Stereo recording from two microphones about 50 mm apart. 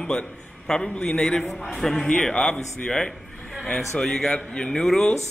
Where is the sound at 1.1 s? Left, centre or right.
Left.